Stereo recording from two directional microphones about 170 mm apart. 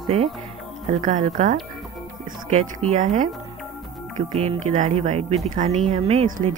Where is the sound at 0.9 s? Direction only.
50° right (ahead or behind).